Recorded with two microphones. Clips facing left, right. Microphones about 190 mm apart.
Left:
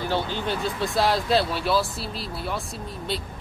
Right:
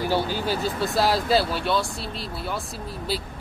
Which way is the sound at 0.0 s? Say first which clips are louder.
Right 2 dB; 10° right (ahead or behind).